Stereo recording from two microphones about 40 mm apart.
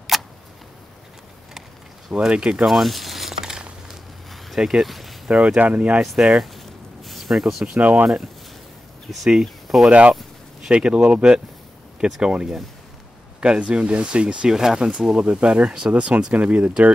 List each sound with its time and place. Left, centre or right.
0.1 s a sound: centre
2.1 s speech: right
2.6 s zipper: centre
4.6 s speech: centre
4.8 s speech: centre
5.6 s speech: right
6.1 s speech: centre
6.4 s a sound: centre
7.8 s speech: right
9.3 s speech: centre
9.8 s speech: right
14.5 s speech: centre
14.8 s speech: right